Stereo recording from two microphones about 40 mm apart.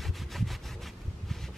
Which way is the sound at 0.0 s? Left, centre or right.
Centre.